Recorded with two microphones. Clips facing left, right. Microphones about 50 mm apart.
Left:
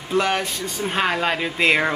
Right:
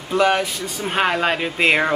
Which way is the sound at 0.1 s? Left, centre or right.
Centre.